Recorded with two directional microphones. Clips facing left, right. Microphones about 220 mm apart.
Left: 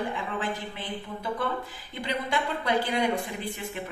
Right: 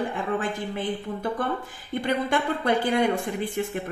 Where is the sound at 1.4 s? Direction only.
50° right (ahead or behind).